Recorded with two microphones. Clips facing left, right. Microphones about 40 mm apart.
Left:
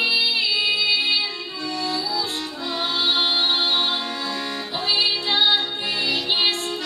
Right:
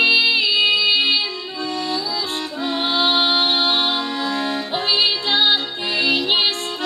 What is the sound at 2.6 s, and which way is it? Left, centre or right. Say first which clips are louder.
Music: right 4 dB; right.